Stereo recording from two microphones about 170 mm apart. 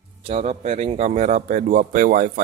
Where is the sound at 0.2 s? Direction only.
40° right (ahead or behind).